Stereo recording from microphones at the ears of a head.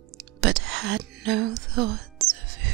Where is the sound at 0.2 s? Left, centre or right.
Right.